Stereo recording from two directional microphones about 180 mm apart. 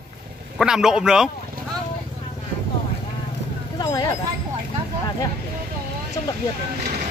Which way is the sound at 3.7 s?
20° left (ahead or behind).